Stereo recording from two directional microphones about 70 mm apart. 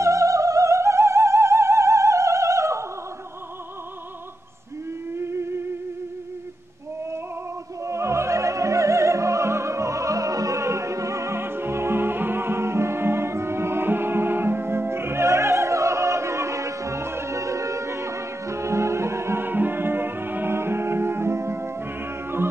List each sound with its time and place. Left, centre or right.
0.0 s opera: right
5.1 s music: right
7.8 s opera: right